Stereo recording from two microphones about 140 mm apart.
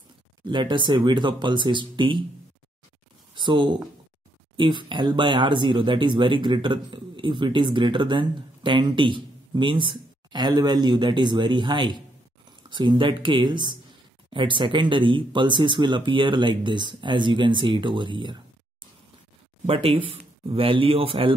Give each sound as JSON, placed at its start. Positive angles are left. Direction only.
{"t": 0.5, "sound": "speech", "side_deg": -35}
{"t": 3.3, "sound": "speech", "side_deg": -35}
{"t": 19.6, "sound": "a man's voice", "side_deg": -45}